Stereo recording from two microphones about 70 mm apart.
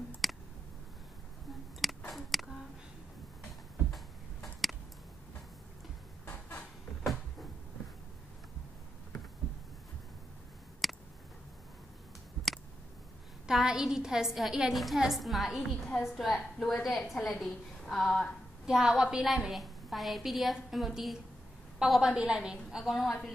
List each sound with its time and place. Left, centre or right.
0.2 s clicking: centre
1.8 s a sound: centre
3.9 s tick-tock: centre
10.8 s a sound: centre
13.5 s a woman's voice: centre
18.7 s a woman's voice: centre